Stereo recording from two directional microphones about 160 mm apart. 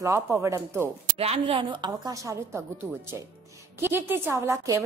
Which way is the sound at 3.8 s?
15° right (ahead or behind).